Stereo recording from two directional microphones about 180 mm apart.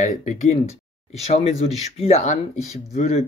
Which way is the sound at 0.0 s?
40° left (ahead or behind).